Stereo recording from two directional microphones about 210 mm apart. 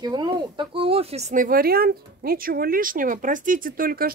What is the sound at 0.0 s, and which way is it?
Speech, 20° right (ahead or behind).